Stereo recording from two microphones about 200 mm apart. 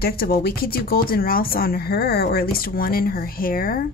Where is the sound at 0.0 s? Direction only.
50° left (ahead or behind).